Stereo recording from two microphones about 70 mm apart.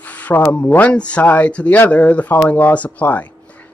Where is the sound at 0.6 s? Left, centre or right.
Centre.